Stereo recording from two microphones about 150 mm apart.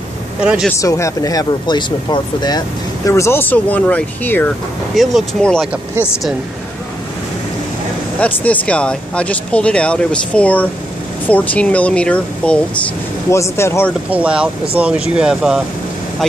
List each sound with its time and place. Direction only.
0.4 s speech: 5° right (ahead or behind)
0.7 s speech: 20° left (ahead or behind); by 5.7 s 5° left (ahead or behind)
8.2 s speech: 10° left (ahead or behind)
13.3 s speech: 20° left (ahead or behind)
14.1 s speech: 5° right (ahead or behind)